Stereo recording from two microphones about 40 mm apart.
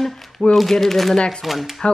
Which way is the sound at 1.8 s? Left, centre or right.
Left.